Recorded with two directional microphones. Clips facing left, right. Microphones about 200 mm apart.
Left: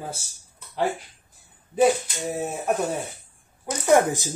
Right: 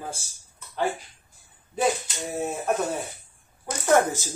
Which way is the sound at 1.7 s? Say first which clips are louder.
Left 5 dB; centre (ahead or behind).